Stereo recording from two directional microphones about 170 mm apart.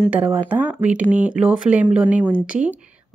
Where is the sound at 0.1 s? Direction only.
10° right (ahead or behind).